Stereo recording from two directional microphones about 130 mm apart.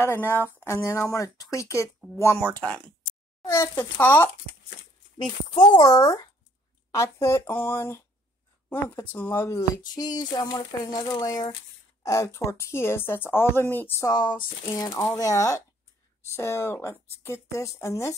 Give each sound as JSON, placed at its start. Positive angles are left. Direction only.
{"t": 0.0, "sound": "speech", "side_deg": 15}
{"t": 2.4, "sound": "speech", "side_deg": 10}
{"t": 5.6, "sound": "speech", "side_deg": 30}
{"t": 14.0, "sound": "speech", "side_deg": 35}